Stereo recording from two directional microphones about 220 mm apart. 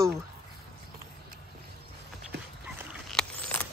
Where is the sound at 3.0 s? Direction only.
5° left (ahead or behind).